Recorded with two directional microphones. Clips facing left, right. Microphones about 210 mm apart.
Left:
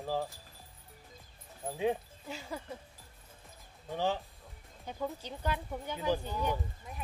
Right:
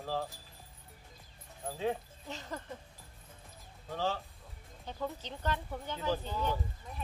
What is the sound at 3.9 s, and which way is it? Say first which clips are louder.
Speech: left 2 dB; 15° left (ahead or behind).